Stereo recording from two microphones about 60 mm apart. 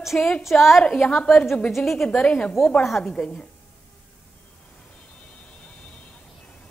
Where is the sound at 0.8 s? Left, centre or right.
Centre.